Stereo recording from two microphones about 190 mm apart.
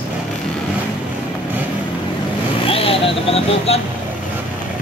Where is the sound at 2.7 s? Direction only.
30° left (ahead or behind).